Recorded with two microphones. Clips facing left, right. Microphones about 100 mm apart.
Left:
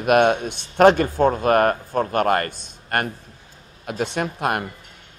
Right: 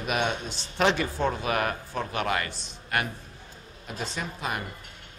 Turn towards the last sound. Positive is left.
turn(degrees=60)  # may be behind; listen again after turning